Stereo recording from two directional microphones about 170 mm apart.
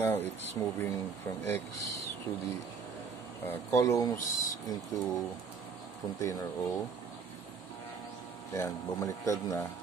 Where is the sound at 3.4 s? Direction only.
15° left (ahead or behind).